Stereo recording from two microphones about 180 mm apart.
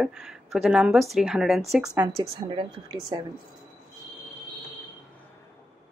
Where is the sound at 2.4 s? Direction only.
25° right (ahead or behind).